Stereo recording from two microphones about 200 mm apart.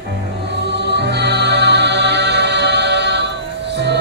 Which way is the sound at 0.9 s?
55° right (ahead or behind).